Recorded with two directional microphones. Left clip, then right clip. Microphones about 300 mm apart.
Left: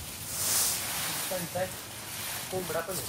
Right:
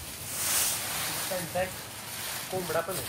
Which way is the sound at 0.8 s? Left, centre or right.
Centre.